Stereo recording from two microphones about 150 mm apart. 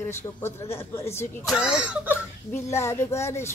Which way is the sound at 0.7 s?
15° left (ahead or behind).